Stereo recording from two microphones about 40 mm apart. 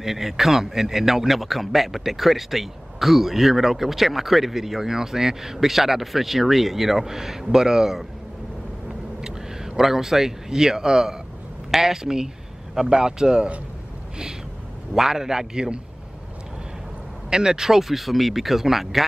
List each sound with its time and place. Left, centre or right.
0.0 s a man's voice: centre
9.2 s a man's voice: centre
15.0 s a man's voice: centre
17.3 s a man's voice: centre